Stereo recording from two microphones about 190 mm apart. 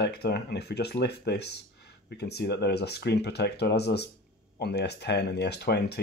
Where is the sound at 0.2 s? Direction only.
60° left (ahead or behind).